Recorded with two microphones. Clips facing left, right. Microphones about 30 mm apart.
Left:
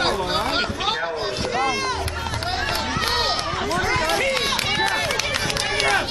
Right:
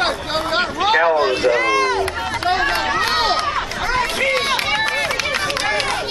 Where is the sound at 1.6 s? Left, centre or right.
Right.